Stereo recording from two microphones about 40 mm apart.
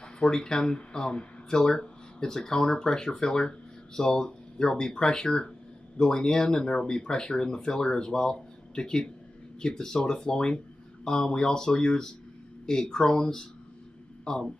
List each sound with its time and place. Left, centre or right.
0.0 s speech: centre